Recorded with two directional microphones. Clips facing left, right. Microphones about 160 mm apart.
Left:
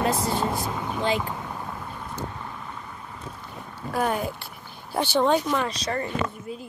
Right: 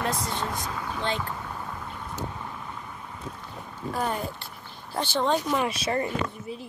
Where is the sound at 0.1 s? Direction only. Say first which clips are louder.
Left 5 dB; 30° left (ahead or behind); by 1.5 s 15° left (ahead or behind).